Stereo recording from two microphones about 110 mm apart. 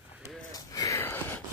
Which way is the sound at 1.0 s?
20° left (ahead or behind).